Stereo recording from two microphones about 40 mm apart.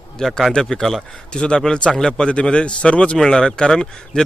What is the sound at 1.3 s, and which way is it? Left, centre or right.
Speech, left.